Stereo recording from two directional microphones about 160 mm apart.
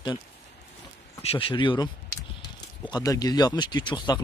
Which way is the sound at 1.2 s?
35° left (ahead or behind).